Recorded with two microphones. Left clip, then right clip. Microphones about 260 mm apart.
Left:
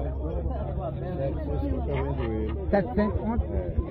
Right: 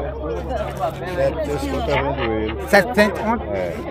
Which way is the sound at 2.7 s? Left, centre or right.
Right.